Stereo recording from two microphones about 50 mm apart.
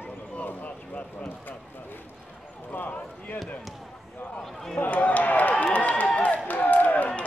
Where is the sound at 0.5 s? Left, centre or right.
Left.